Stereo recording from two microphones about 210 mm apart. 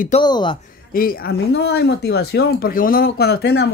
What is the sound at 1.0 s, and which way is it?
A man's voice, 45° left (ahead or behind).